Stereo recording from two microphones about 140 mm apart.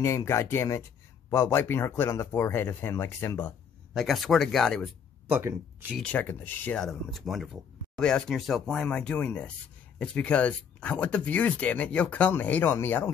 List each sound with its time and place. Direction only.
0.0 s speech: 20° left (ahead or behind)
3.9 s speech: centre (ahead or behind)
5.3 s speech: 15° right (ahead or behind)
5.9 s speech: 10° left (ahead or behind)